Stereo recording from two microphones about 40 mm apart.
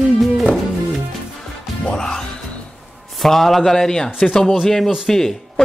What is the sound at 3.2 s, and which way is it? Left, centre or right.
Speech, centre.